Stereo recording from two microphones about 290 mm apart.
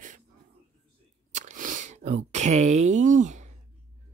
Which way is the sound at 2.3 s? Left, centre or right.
Right.